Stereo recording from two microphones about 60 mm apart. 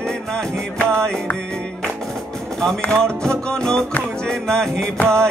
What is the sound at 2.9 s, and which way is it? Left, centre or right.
Music, centre.